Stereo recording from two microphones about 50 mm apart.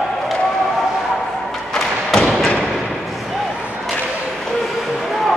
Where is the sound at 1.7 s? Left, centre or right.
Centre.